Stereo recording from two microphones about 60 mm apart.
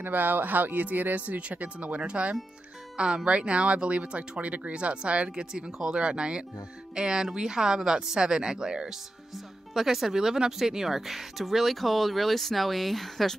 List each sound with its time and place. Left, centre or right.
0.0 s speech: right; by 13.4 s centre